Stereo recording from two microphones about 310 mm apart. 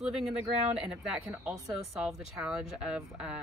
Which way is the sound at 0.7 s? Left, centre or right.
Centre.